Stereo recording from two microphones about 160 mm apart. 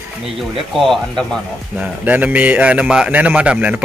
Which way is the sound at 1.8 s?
10° right (ahead or behind).